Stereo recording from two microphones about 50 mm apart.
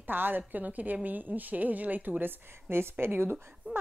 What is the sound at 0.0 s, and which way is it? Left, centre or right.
A woman's voice, right.